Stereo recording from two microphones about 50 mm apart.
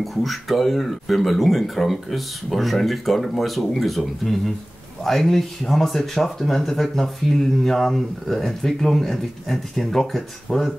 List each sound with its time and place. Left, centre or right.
0.0 s speech: centre